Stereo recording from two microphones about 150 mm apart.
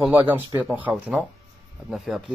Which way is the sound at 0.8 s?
5° right (ahead or behind).